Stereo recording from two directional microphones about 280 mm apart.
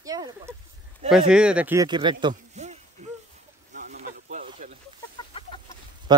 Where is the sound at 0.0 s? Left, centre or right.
Centre.